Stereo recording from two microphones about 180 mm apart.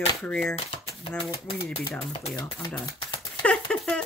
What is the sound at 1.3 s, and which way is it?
Speech, 20° left (ahead or behind).